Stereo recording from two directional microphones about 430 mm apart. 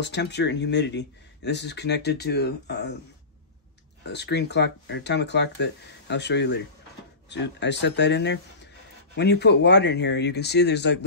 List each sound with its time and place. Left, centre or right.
0.0 s speech: left
4.0 s speech: left